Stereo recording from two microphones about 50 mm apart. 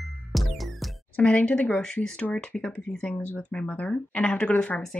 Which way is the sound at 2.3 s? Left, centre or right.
Centre.